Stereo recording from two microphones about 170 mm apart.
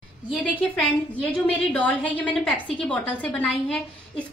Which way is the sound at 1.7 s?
10° left (ahead or behind).